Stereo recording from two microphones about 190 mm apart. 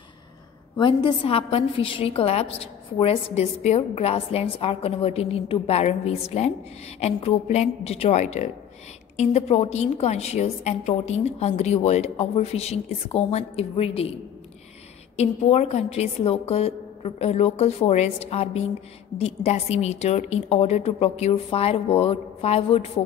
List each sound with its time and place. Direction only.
0.7 s a woman's voice: 25° left (ahead or behind)
15.1 s a woman's voice: 35° left (ahead or behind)